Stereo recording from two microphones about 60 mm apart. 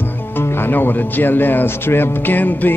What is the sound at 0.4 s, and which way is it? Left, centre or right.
Speech, left.